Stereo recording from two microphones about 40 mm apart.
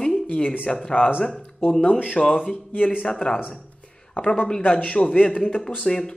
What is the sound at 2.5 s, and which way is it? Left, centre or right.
Speech, left.